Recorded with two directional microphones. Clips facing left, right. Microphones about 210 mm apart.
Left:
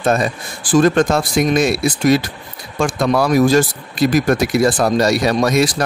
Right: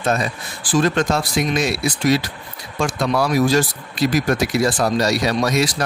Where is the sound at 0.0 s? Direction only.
50° left (ahead or behind).